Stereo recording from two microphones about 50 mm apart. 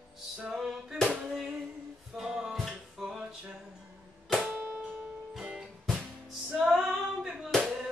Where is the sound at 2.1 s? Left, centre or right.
Centre.